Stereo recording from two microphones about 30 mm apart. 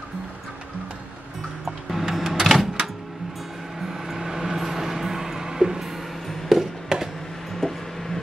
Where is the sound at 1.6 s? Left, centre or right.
Centre.